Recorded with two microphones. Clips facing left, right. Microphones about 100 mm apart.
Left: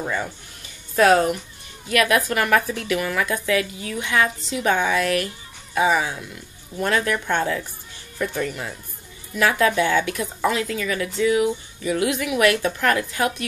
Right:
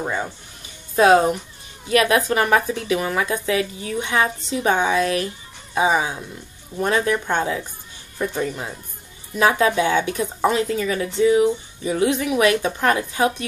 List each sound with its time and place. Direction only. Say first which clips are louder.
0.0 s speech: right 1 dB; 25° right (ahead or behind)